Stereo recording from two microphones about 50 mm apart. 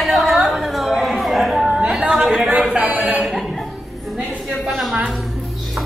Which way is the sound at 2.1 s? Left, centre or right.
Centre.